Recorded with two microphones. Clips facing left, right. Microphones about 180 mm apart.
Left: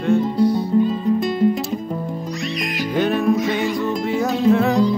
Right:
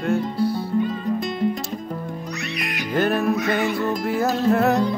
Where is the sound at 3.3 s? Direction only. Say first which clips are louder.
Left 2 dB; 60° right (ahead or behind).